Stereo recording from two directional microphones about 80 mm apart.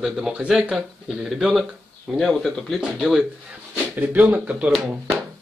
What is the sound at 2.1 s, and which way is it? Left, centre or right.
Speech, centre.